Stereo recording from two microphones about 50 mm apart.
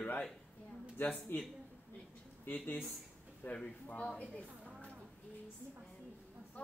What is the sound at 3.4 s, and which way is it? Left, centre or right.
Speech, left.